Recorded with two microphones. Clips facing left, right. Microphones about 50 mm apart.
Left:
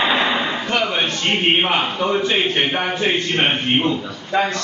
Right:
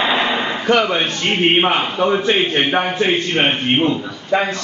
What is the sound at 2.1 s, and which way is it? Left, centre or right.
Speech, right.